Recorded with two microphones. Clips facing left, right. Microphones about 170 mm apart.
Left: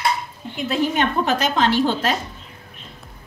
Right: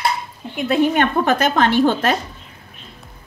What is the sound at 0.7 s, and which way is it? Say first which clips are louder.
A woman's voice: right 4 dB; 55° right (ahead or behind).